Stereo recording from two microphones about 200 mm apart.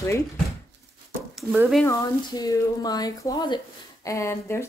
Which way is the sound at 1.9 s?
15° left (ahead or behind).